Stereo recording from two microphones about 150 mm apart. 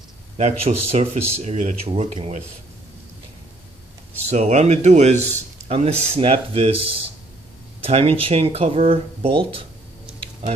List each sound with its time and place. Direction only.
0.4 s speech: 50° right (ahead or behind)
4.3 s speech: 50° right (ahead or behind)
7.8 s speech: 40° right (ahead or behind)
9.6 s a sound: 40° right (ahead or behind)